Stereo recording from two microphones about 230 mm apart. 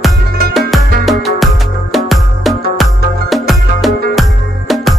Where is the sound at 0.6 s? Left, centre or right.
Centre.